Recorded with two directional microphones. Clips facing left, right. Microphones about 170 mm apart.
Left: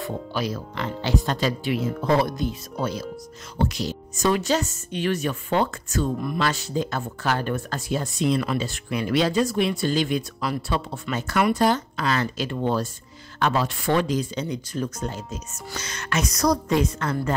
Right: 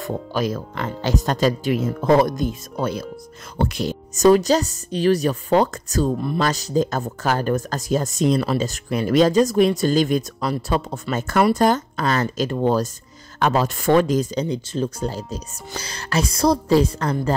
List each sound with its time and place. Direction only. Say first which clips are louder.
0.0 s speech: right 4 dB; 45° right (ahead or behind)
14.4 s speech: right 4 dB; 30° right (ahead or behind)